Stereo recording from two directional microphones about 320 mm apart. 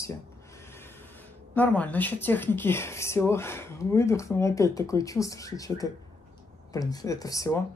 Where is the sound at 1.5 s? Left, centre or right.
Centre.